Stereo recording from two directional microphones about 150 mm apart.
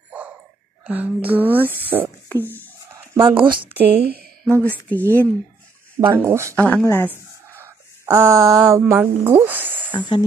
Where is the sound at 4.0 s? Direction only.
90° right.